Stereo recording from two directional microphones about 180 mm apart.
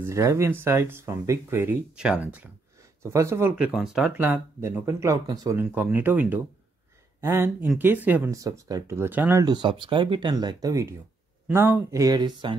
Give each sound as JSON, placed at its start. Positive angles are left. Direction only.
{"t": 0.0, "sound": "speech", "side_deg": -15}
{"t": 9.4, "sound": "speech", "side_deg": -25}